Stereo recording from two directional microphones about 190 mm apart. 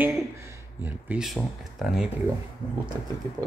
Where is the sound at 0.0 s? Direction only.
15° right (ahead or behind).